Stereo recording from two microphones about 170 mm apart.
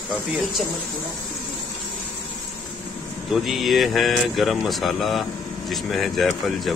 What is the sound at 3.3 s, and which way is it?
Speech, centre (ahead or behind).